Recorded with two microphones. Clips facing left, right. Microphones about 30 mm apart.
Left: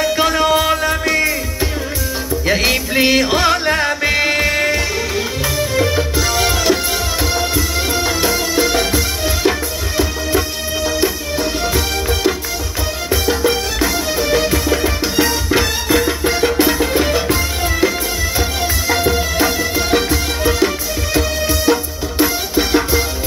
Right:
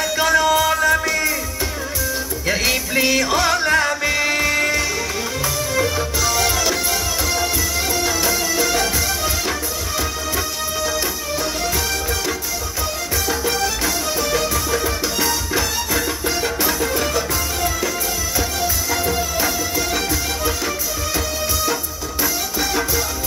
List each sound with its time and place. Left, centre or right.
0.0 s music: left
2.4 s music: left
13.1 s music: left